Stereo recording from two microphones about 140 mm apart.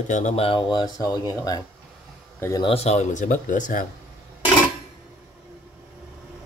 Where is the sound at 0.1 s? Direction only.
55° left (ahead or behind); by 1.6 s 25° left (ahead or behind).